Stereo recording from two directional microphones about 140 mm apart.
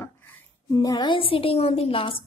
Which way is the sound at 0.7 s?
30° left (ahead or behind).